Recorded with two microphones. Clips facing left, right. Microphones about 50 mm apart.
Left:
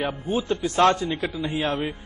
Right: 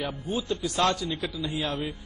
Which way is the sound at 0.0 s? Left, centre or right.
Left.